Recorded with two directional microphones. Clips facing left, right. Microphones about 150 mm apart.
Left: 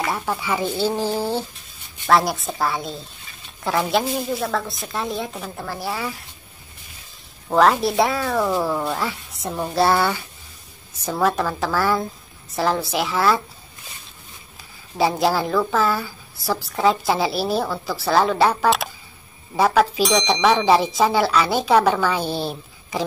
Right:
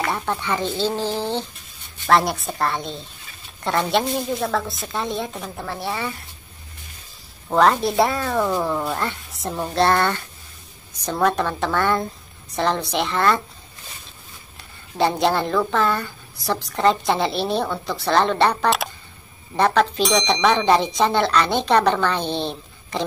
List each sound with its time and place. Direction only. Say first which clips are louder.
0.0 s speech: even; 5° left (ahead or behind)
7.4 s speech: left 1 dB; centre (ahead or behind)
14.6 s speech: even; 5° left (ahead or behind)